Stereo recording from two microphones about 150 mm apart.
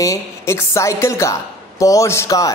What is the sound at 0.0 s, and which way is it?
A woman's voice, 20° left (ahead or behind).